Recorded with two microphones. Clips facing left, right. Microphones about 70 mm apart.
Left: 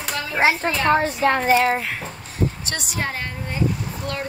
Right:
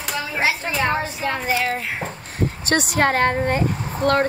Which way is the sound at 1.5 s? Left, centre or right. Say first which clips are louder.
Left 3 dB; left.